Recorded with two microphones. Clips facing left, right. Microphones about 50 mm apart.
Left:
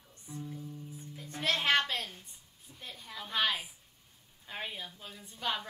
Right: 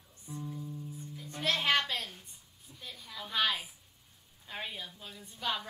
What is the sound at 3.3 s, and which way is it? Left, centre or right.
A woman's voice, centre.